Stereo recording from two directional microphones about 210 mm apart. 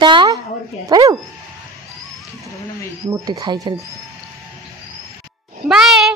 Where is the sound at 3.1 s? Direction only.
15° right (ahead or behind).